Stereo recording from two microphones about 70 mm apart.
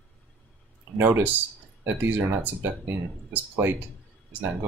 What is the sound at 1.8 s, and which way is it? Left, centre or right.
Speech, right.